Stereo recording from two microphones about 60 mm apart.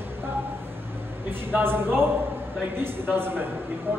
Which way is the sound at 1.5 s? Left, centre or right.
Right.